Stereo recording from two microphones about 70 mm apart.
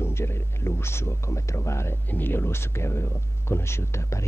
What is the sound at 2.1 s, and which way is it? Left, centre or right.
Speech, left.